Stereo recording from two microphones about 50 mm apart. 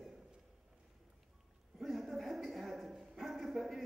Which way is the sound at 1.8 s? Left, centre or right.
Centre.